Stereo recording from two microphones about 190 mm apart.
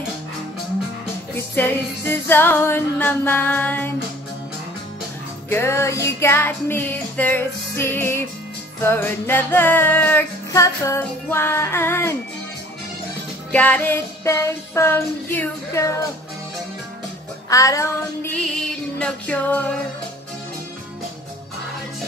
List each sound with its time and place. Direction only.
1.3 s music: 10° left (ahead or behind)
5.5 s music: 15° left (ahead or behind)
13.5 s music: 10° left (ahead or behind)
17.5 s music: 15° left (ahead or behind)
18.9 s music: 5° left (ahead or behind)